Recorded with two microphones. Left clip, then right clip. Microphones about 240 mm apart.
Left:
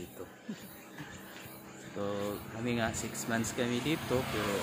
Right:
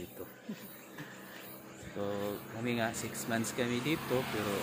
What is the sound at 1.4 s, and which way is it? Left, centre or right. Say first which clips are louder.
Music: left 1 dB; left.